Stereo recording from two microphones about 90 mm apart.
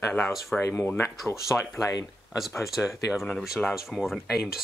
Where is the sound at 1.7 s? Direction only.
40° left (ahead or behind).